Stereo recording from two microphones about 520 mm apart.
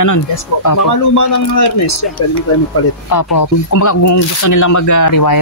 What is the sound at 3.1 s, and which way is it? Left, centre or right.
Speech, left.